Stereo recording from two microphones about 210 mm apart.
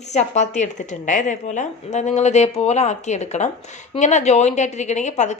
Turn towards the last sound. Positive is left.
turn(degrees=35)  # may be behind; listen again after turning